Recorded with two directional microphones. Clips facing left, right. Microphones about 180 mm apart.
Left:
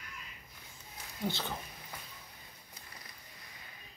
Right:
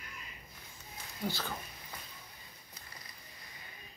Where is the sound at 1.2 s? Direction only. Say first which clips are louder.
Left 1 dB; 20° left (ahead or behind).